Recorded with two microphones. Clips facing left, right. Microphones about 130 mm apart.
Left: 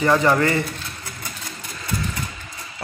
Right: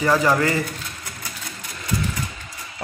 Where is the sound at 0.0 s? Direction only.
5° right (ahead or behind).